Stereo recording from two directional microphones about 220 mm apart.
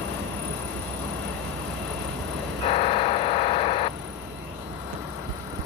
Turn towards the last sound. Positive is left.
turn(degrees=25)  # may be behind; listen again after turning